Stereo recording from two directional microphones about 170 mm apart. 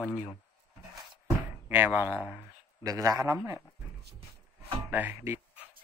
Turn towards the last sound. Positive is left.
turn(degrees=-10)  # may be behind; listen again after turning